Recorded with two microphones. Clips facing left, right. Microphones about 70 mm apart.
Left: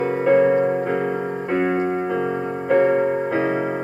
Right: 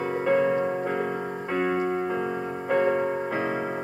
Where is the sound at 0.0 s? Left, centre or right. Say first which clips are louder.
Left 7 dB; left.